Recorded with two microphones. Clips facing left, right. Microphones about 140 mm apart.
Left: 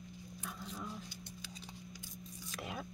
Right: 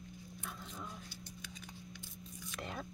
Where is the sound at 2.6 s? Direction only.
5° left (ahead or behind).